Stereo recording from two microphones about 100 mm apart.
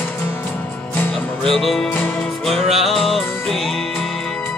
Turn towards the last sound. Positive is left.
turn(degrees=5)  # may be behind; listen again after turning